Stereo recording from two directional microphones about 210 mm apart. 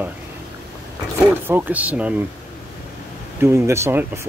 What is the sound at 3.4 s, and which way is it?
Speech, 10° right (ahead or behind).